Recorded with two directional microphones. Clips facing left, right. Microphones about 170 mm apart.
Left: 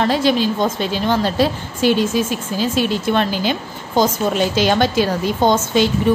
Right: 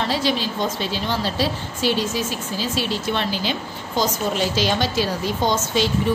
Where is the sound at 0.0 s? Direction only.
50° left (ahead or behind).